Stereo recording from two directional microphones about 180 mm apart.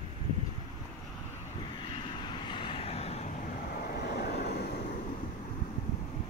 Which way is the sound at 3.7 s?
65° left (ahead or behind).